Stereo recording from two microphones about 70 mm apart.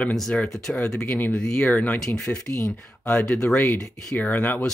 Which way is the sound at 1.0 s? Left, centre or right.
Left.